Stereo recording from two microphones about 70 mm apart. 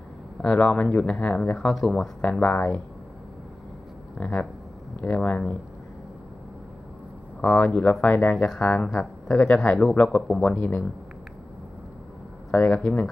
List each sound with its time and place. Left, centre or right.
0.4 s speech: centre
1.8 s speech: centre
2.3 s speech: centre
4.2 s speech: centre
7.4 s speech: centre
8.5 s speech: centre
12.4 s speech: centre